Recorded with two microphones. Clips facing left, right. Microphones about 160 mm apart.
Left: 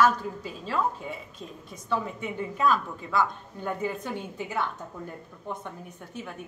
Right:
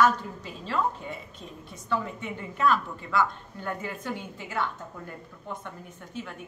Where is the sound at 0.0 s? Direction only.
5° left (ahead or behind).